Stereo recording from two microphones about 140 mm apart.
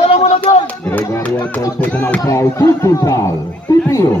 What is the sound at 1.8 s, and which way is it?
Speech, 10° left (ahead or behind).